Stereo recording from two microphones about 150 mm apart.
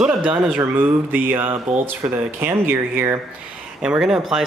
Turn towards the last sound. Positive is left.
turn(degrees=-5)  # may be behind; listen again after turning